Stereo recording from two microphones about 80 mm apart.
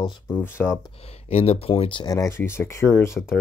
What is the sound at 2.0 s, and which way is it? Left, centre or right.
Speech, left.